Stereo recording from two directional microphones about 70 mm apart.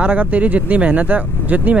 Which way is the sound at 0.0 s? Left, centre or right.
Right.